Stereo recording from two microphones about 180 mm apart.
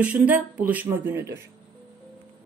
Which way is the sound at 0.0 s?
5° right (ahead or behind).